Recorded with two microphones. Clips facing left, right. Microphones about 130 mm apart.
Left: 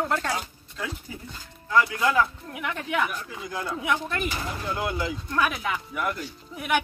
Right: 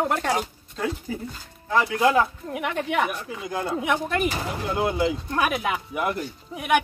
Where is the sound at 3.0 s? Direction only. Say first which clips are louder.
Even; 55° right (ahead or behind).